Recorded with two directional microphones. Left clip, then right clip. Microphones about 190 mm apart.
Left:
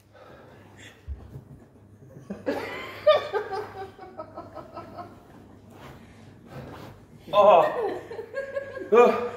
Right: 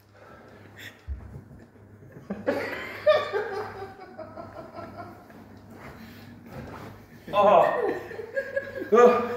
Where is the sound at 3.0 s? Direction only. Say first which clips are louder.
Left 1 dB; 15° left (ahead or behind).